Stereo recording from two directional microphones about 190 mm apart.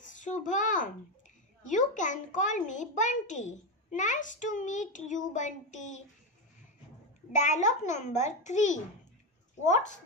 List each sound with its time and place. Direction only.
0.0 s a sound: 40° left (ahead or behind)
1.6 s a child's voice: 40° left (ahead or behind)
7.4 s a child's voice: 40° left (ahead or behind)